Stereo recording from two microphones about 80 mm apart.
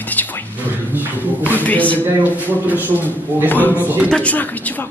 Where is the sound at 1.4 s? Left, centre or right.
Left.